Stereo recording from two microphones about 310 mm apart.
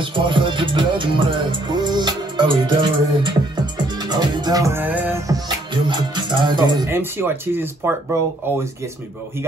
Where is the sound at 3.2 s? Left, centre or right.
Centre.